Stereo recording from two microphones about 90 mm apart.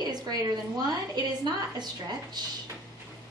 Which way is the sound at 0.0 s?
50° right (ahead or behind).